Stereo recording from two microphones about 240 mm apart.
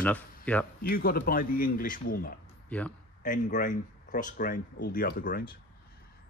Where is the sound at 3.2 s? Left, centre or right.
Left.